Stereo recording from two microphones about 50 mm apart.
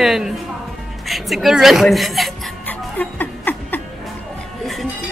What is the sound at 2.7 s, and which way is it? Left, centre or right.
Music, left.